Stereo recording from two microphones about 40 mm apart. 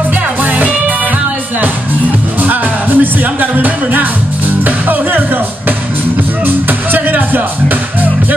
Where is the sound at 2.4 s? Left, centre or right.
Right.